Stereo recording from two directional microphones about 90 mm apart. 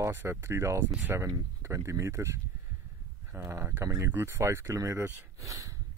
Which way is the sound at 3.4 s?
30° right (ahead or behind).